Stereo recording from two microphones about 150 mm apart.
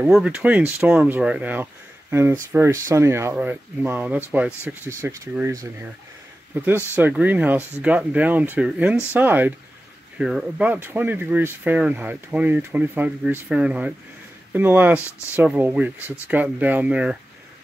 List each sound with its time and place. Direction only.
0.1 s speech: 5° right (ahead or behind)